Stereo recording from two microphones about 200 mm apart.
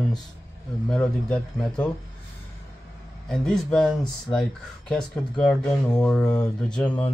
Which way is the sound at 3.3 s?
5° left (ahead or behind).